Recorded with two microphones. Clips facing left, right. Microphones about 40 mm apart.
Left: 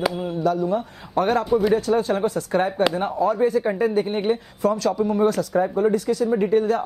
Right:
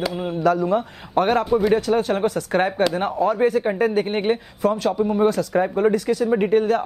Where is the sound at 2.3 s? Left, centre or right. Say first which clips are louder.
Right 1 dB; right.